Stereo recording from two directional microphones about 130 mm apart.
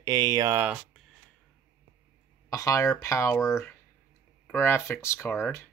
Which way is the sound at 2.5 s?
25° left (ahead or behind).